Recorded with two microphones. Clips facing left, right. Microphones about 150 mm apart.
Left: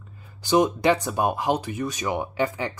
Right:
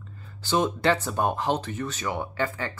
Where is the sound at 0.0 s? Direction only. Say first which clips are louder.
Right 2 dB; 10° left (ahead or behind).